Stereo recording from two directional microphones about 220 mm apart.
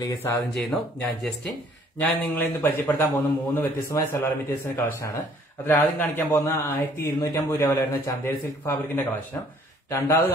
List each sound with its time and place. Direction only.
0.0 s a man's voice: 15° left (ahead or behind)
0.7 s a man's voice: 5° left (ahead or behind)